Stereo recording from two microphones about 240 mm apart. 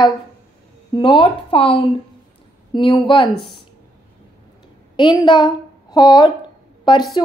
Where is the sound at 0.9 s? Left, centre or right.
Centre.